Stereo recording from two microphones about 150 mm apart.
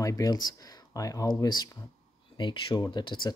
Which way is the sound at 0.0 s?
25° left (ahead or behind).